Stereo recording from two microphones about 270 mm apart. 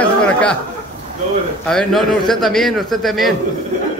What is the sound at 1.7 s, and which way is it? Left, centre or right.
A man's voice, centre.